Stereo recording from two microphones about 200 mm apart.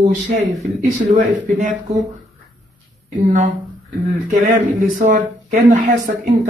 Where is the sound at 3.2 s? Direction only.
40° right (ahead or behind).